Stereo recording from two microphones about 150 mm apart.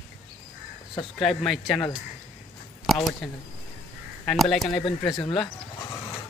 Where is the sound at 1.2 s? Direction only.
Centre (ahead or behind).